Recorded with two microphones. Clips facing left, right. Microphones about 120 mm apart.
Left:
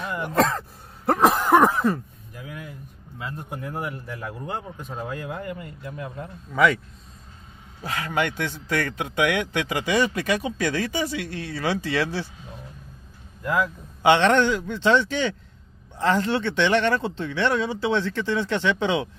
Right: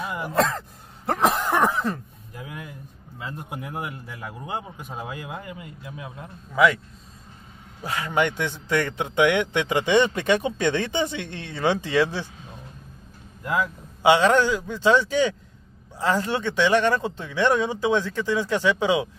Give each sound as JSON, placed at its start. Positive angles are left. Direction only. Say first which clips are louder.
{"t": 0.0, "sound": "sigh", "louder": "left 1 dB", "side_deg": -5}
{"t": 1.2, "sound": "a sound", "louder": "left 4 dB", "side_deg": 5}
{"t": 2.3, "sound": "a sound", "louder": "right 1 dB", "side_deg": -20}
{"t": 3.2, "sound": "a man's voice", "louder": "left 1 dB", "side_deg": -15}
{"t": 8.1, "sound": "a man's voice", "louder": "right 2 dB", "side_deg": -20}
{"t": 13.5, "sound": "a man's voice", "louder": "left 1 dB", "side_deg": -15}